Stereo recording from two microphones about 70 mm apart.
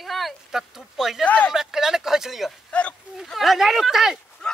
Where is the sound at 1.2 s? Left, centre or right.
Left.